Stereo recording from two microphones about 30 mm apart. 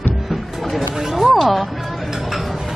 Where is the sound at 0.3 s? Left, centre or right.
Centre.